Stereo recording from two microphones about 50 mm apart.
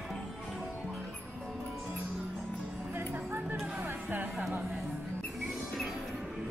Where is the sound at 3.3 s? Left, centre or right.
Right.